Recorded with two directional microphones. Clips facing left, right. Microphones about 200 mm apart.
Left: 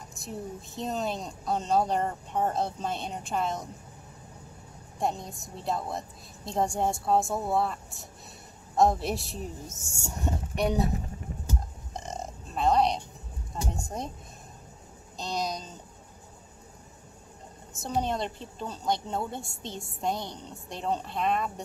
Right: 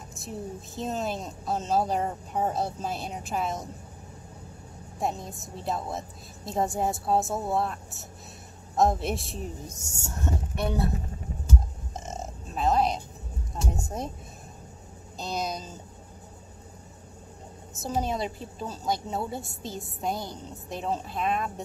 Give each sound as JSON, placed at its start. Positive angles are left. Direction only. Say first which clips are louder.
{"t": 0.1, "sound": "a woman's voice", "louder": "right 1 dB", "side_deg": 0}
{"t": 4.9, "sound": "a woman's voice", "louder": "even", "side_deg": 0}
{"t": 10.0, "sound": "speech", "louder": "right 1 dB", "side_deg": 15}
{"t": 11.9, "sound": "burping", "louder": "even", "side_deg": -5}
{"t": 13.8, "sound": "a woman's voice", "louder": "right 2 dB", "side_deg": -5}
{"t": 15.1, "sound": "a woman's voice", "louder": "even", "side_deg": -5}
{"t": 17.8, "sound": "a woman's voice", "louder": "right 1 dB", "side_deg": -5}